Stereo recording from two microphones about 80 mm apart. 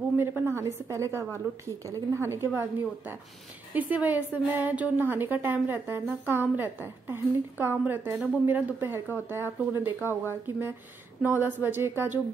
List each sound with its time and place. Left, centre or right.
0.2 s a woman's voice: right